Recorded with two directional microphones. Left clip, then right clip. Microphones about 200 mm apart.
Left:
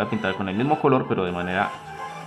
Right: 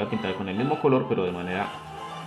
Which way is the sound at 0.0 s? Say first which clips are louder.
Left 4 dB; 25° left (ahead or behind).